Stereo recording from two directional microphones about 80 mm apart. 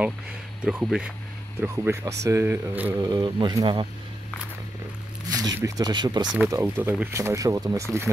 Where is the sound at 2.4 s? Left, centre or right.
Right.